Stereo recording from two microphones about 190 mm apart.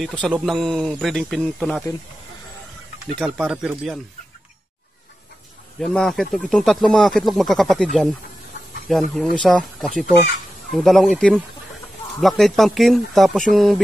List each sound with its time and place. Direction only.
0.0 s speech: 5° left (ahead or behind)
3.2 s speech: centre (ahead or behind)
5.8 s speech: centre (ahead or behind)